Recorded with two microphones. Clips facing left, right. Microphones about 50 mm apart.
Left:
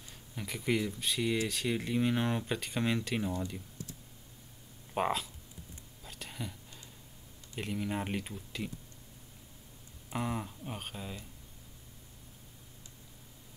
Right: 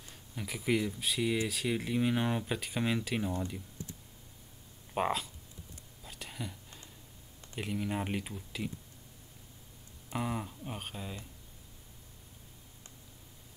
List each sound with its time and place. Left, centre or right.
0.1 s speech: centre
4.9 s speech: centre
6.0 s a sound: centre
7.5 s speech: centre
10.0 s speech: centre